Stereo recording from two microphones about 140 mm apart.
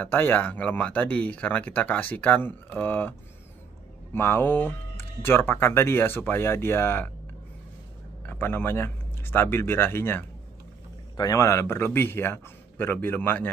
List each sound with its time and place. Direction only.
0.0 s speech: 15° left (ahead or behind)
8.2 s speech: 15° left (ahead or behind)